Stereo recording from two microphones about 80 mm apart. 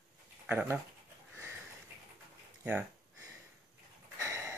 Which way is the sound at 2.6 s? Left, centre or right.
Centre.